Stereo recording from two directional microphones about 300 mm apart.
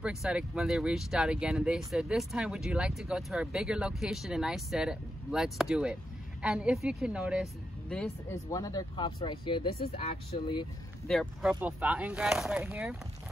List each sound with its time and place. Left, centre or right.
0.0 s speech: centre
11.1 s speech: centre